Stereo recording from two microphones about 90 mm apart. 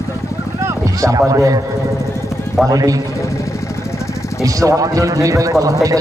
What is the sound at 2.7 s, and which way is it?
Speech, 40° right (ahead or behind).